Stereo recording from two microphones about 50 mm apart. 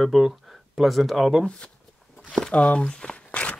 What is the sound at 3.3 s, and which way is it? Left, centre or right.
Walk, left.